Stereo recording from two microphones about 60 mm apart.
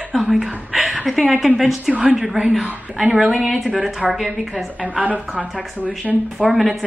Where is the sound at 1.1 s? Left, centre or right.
Centre.